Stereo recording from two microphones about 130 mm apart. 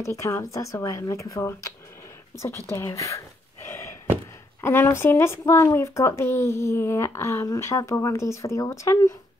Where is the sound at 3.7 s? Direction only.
25° left (ahead or behind).